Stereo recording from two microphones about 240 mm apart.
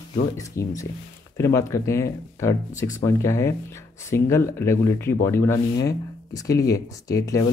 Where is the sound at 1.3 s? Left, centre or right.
Centre.